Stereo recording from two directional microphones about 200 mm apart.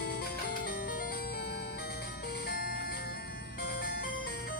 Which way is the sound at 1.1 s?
55° left (ahead or behind).